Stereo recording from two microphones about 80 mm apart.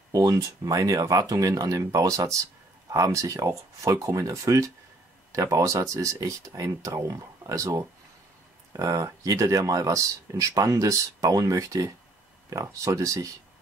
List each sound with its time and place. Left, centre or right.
0.1 s speech: right